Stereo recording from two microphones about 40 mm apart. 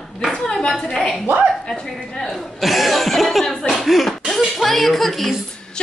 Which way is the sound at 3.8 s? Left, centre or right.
Centre.